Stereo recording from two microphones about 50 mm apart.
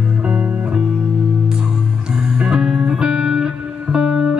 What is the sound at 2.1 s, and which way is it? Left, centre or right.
Music, centre.